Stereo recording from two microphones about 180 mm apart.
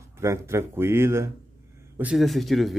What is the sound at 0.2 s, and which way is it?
Speech, 15° right (ahead or behind).